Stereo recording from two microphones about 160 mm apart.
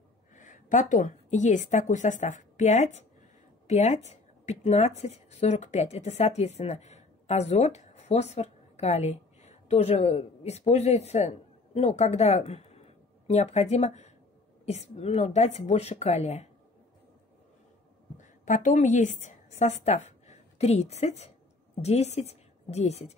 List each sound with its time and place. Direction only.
0.4 s a woman's voice: 50° left (ahead or behind)
18.1 s a woman's voice: 50° left (ahead or behind)